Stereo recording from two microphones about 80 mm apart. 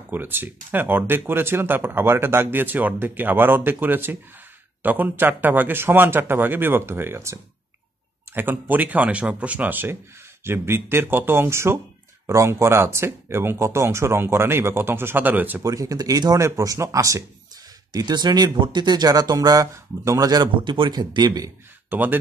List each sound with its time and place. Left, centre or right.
0.1 s speech: right
15.6 s speech: right
16.4 s speech: right
17.9 s speech: right
20.6 s speech: right
21.8 s speech: right